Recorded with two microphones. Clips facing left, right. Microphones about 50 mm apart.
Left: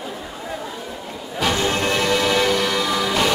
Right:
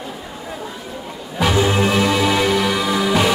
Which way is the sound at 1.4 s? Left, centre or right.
Centre.